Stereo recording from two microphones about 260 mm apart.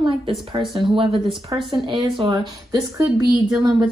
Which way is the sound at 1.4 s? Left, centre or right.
Right.